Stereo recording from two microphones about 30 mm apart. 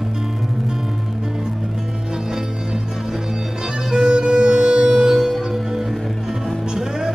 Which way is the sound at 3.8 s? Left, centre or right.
Centre.